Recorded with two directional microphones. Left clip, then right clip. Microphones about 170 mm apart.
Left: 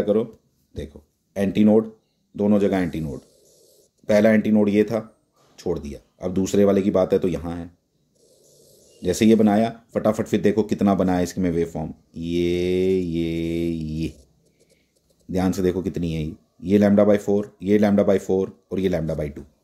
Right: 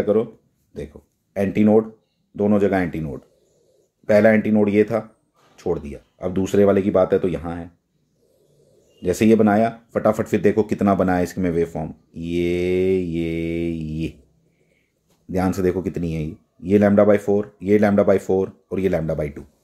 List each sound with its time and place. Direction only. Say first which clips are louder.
0.0 s speech: right 2 dB; 10° left (ahead or behind)
9.0 s speech: right 2 dB; 5° left (ahead or behind)
15.3 s speech: right 2 dB; 5° left (ahead or behind)